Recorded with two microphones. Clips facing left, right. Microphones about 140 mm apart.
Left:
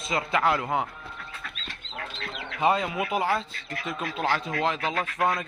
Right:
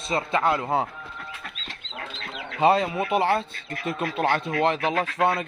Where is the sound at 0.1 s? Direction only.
25° right (ahead or behind).